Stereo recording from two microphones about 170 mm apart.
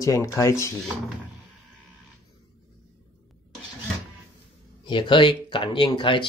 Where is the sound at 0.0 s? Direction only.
20° left (ahead or behind).